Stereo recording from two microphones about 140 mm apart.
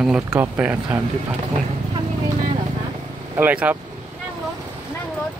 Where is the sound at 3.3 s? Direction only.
10° right (ahead or behind).